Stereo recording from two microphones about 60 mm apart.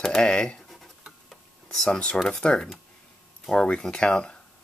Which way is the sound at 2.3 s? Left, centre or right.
Centre.